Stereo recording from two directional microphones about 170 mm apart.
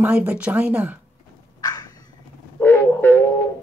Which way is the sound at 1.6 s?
20° left (ahead or behind).